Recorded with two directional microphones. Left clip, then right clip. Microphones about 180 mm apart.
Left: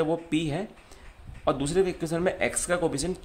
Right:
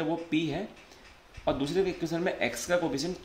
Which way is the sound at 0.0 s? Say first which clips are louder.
Left 3 dB; 30° left (ahead or behind).